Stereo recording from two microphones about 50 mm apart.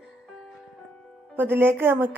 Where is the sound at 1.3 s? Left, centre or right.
Right.